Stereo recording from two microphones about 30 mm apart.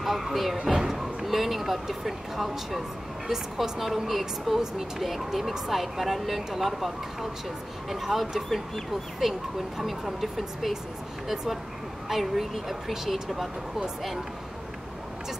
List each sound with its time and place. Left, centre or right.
0.0 s speech: centre
3.3 s speech: centre
12.1 s speech: centre